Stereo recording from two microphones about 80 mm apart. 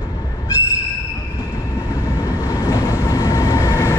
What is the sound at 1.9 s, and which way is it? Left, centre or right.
Train, left.